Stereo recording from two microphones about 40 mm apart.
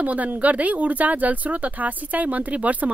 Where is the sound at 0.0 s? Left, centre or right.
Right.